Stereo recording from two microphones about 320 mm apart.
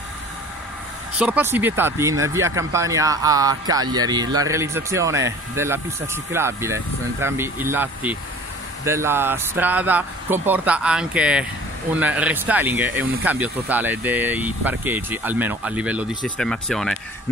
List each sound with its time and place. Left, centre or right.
1.1 s speech: centre